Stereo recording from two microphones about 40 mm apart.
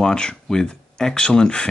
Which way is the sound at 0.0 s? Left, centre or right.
Left.